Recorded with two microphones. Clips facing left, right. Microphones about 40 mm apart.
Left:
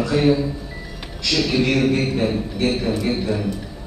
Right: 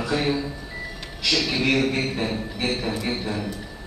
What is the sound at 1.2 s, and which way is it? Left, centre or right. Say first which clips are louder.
Speech: left 1 dB; centre.